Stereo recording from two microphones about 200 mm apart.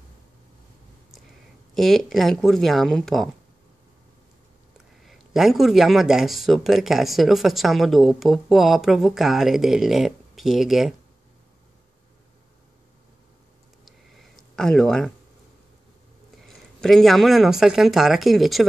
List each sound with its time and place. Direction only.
1.8 s speech: centre (ahead or behind)
4.7 s speech: centre (ahead or behind)
13.8 s a sound: centre (ahead or behind)
16.4 s speech: centre (ahead or behind)